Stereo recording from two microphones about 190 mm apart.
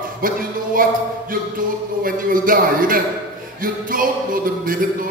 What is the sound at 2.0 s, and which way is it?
Music, 50° right (ahead or behind).